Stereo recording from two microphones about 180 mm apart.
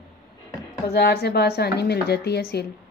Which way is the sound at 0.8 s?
65° left (ahead or behind).